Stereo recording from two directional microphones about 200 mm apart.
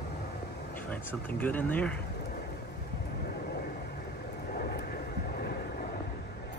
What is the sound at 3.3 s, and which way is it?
Vehicle, 45° left (ahead or behind).